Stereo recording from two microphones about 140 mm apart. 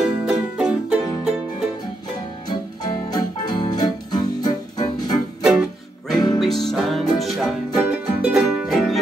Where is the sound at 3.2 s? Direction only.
30° left (ahead or behind).